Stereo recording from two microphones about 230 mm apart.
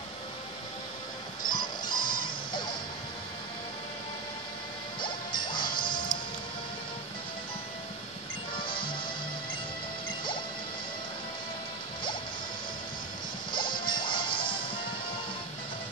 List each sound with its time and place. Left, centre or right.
1.5 s music: centre
5.0 s music: centre
8.6 s music: left
13.5 s music: centre